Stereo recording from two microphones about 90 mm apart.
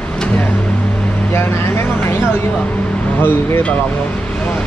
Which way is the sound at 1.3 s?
25° left (ahead or behind).